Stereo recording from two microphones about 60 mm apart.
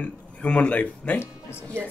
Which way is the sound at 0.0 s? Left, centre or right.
Left.